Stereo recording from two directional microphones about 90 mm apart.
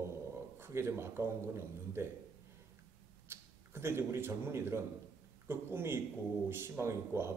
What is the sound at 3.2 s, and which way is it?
Speech, 25° right (ahead or behind).